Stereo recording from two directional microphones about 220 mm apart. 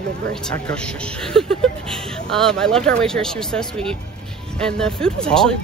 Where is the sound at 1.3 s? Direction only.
Centre (ahead or behind).